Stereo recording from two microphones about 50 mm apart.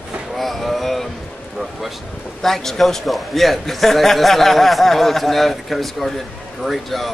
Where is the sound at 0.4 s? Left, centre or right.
Centre.